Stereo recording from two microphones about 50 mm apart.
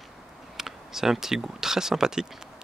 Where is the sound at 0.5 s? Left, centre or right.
Centre.